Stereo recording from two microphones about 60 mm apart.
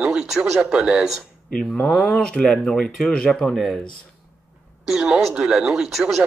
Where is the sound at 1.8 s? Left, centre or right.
Centre.